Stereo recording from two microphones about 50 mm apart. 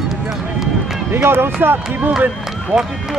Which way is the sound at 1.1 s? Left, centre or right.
Right.